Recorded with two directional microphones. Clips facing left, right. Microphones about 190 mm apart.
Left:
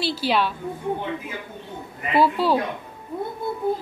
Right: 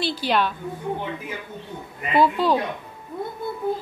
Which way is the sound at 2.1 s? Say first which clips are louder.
Even; 5° left (ahead or behind).